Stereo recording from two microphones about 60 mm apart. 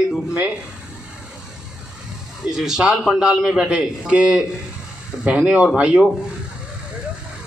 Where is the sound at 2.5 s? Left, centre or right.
Centre.